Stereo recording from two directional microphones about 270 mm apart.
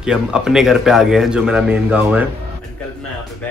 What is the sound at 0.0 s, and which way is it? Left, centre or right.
A man's voice, centre.